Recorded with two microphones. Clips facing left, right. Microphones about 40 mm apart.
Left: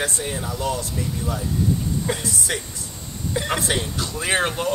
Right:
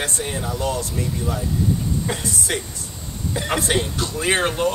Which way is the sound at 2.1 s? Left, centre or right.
Centre.